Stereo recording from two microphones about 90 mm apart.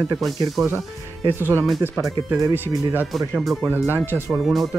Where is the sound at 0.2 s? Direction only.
Centre (ahead or behind).